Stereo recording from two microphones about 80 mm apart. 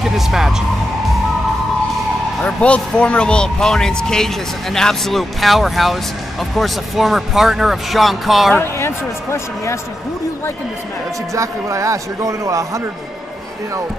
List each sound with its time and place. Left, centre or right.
0.0 s speech: centre
2.4 s speech: centre
8.5 s speech: left
11.3 s speech: right